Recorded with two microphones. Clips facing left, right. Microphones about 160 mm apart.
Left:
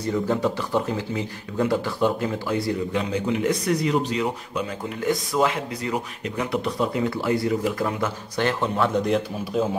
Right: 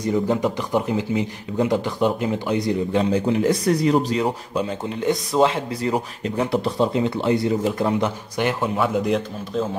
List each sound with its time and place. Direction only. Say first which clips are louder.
0.0 s speech: right 2 dB; 15° right (ahead or behind)
2.9 s a man's voice: right 5 dB; 35° right (ahead or behind); by 9.7 s 5° left (ahead or behind)